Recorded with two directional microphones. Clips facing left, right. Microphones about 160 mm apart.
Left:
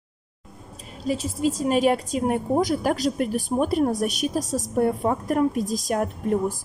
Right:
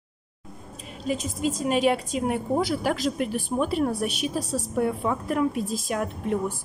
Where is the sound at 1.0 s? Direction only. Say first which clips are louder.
Left 3 dB; 35° left (ahead or behind).